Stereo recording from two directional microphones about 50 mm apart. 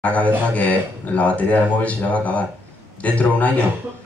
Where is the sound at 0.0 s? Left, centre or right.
Left.